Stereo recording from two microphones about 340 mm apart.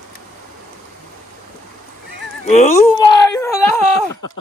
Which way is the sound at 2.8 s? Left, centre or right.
Centre.